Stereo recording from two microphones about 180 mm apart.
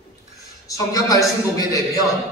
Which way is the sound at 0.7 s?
20° left (ahead or behind).